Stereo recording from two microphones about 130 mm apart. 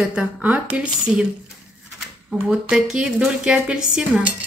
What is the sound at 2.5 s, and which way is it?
Speech, 5° right (ahead or behind).